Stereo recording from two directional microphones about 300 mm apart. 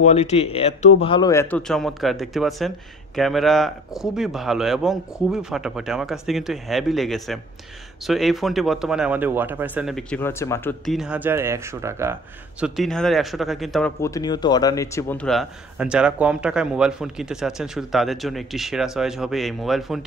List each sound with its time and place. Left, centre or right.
0.0 s speech: left; by 20.1 s centre